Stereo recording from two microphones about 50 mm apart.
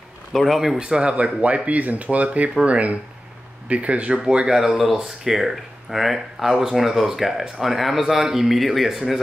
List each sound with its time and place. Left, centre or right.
0.3 s speech: centre
0.7 s speech: centre
1.1 s speech: right
4.6 s speech: centre